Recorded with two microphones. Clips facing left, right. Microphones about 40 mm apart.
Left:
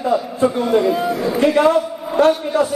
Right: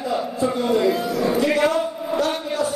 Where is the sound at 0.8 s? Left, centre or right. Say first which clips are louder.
Left 3 dB; left.